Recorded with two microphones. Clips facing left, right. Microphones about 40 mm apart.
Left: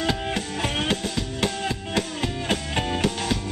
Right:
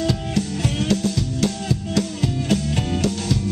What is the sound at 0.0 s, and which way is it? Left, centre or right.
Music, left.